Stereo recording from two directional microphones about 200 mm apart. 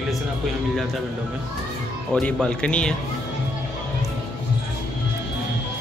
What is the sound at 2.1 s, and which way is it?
Speech, 5° left (ahead or behind).